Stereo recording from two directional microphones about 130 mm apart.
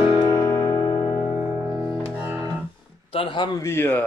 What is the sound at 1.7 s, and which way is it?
Music, 20° right (ahead or behind).